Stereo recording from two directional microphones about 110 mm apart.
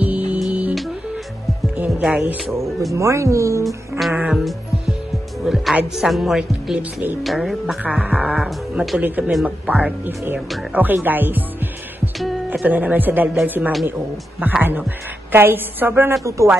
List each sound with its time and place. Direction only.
0.0 s music: 10° right (ahead or behind)
1.9 s music: 5° right (ahead or behind)
2.9 s a woman's voice: 25° right (ahead or behind)
4.3 s music: centre (ahead or behind)
5.4 s speech: centre (ahead or behind)
9.0 s speech: 15° right (ahead or behind)
12.6 s speech: 15° right (ahead or behind)
14.4 s a woman's voice: 15° right (ahead or behind)